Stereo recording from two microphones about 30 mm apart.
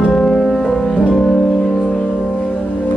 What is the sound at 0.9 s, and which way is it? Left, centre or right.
Music, left.